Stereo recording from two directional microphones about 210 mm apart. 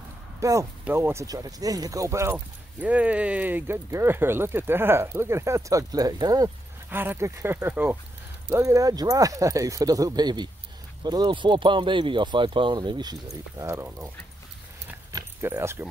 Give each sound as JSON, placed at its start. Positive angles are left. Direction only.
{"t": 0.4, "sound": "speech", "side_deg": -15}
{"t": 14.9, "sound": "keys jangling", "side_deg": -15}